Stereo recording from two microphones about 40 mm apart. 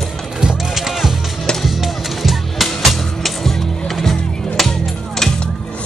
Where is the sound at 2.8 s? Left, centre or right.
Centre.